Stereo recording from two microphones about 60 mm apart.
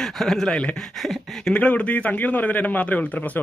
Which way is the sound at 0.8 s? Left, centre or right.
Centre.